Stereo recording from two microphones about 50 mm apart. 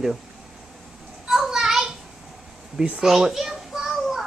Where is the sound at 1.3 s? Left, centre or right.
Centre.